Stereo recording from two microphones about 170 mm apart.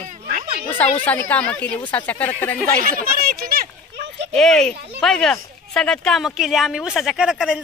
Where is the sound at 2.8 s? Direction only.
60° right (ahead or behind).